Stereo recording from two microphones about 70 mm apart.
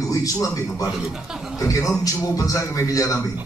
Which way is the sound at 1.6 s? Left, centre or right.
Left.